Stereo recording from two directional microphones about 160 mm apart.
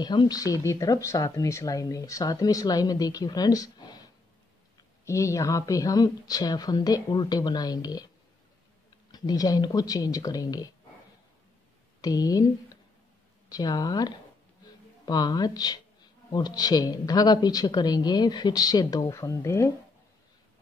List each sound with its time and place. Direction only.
0.0 s speech: 25° left (ahead or behind)
9.1 s speech: 25° left (ahead or behind)
12.0 s speech: 25° left (ahead or behind)
13.5 s speech: 25° left (ahead or behind)